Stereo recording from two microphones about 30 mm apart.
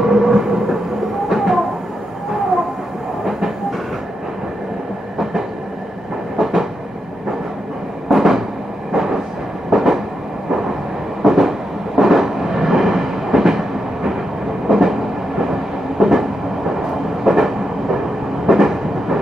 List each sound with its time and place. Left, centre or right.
0.0 s train: centre
1.3 s a sound: centre
6.3 s train: centre
8.1 s train: centre
11.2 s train: centre
18.5 s train: centre